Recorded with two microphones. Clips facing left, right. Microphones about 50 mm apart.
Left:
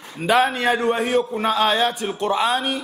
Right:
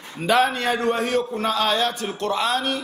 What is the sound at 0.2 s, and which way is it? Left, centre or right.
A man's voice, centre.